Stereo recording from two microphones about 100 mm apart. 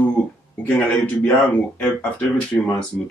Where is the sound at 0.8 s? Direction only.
15° left (ahead or behind).